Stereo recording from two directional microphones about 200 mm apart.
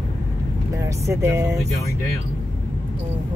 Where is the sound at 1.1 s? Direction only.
15° right (ahead or behind).